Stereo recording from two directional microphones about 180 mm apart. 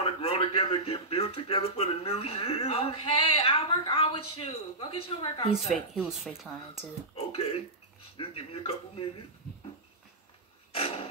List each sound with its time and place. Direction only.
0.0 s speech: 30° left (ahead or behind)
5.5 s speech: centre (ahead or behind)
7.3 s speech: 35° left (ahead or behind)
10.7 s dog: 30° left (ahead or behind)